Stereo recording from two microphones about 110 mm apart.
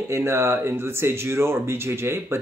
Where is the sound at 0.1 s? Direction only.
25° right (ahead or behind).